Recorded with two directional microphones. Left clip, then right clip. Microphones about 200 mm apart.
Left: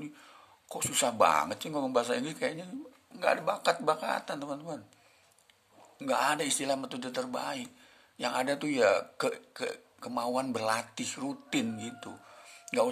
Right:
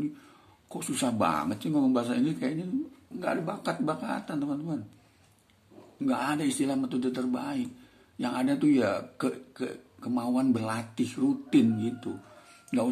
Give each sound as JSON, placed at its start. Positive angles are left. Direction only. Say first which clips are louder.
{"t": 0.7, "sound": "speech", "louder": "left 1 dB", "side_deg": 40}
{"t": 5.9, "sound": "speech", "louder": "left 1 dB", "side_deg": 40}